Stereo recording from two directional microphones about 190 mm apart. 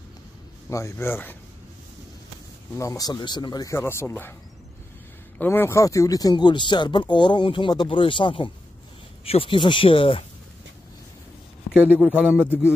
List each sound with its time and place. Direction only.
0.7 s speech: 15° left (ahead or behind)
2.8 s speech: 20° left (ahead or behind)
5.4 s speech: 10° left (ahead or behind); by 10.2 s 30° left (ahead or behind)
11.7 s a man's voice: 5° right (ahead or behind)